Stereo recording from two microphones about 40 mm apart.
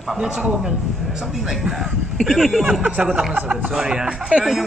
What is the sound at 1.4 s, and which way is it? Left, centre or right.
Speech, centre.